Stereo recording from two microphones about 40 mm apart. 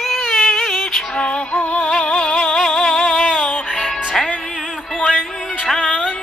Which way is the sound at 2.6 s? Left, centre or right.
Centre.